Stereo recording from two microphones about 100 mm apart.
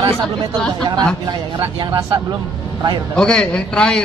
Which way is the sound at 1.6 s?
50° right (ahead or behind).